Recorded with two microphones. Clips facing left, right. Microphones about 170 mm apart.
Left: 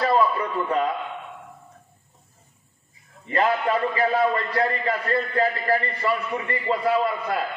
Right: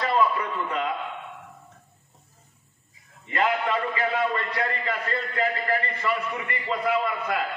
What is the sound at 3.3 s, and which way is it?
A man's voice, 40° left (ahead or behind).